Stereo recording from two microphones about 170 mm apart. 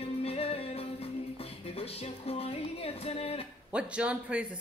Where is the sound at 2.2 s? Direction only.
35° left (ahead or behind).